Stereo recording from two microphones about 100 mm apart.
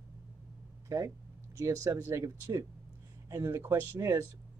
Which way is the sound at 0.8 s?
30° right (ahead or behind).